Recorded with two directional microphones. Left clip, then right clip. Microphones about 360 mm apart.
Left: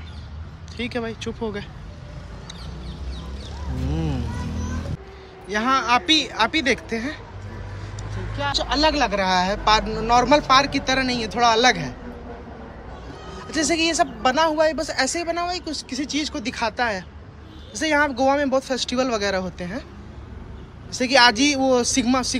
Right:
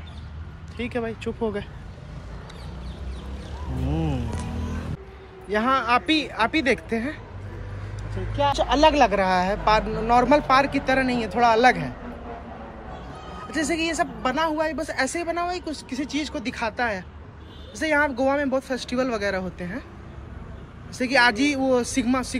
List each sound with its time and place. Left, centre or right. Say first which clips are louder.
0.7 s speech: left 1 dB; centre
3.9 s music: right 1 dB; centre
5.5 s speech: left 1 dB; centre
8.4 s speech: right 2 dB; centre
13.5 s speech: left 4 dB; centre
21.0 s speech: left 3 dB; centre